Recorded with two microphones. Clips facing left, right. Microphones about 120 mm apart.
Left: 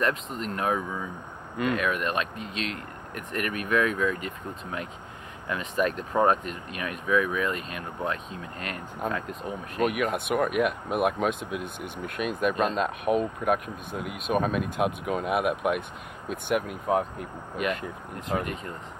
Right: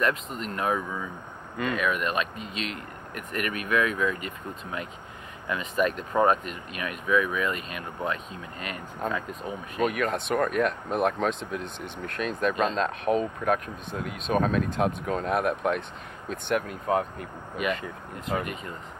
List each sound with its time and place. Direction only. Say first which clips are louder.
0.0 s speech: even; centre (ahead or behind)